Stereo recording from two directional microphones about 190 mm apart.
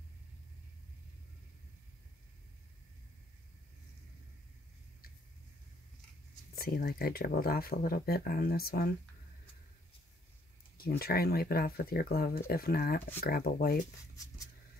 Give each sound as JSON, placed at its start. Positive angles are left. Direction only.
{"t": 6.5, "sound": "speech", "side_deg": 50}
{"t": 10.8, "sound": "speech", "side_deg": 55}
{"t": 14.1, "sound": "a sound", "side_deg": 15}